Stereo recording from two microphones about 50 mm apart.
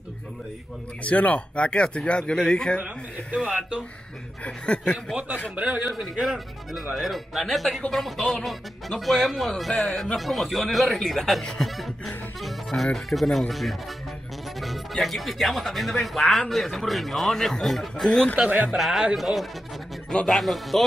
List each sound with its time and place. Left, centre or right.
1.0 s speech: left
3.3 s speech: centre
4.4 s speech: left
5.6 s a man's voice: right
6.2 s speech: centre
11.7 s a sound: centre
12.4 s speech: centre
18.3 s a man's voice: right
18.7 s speech: centre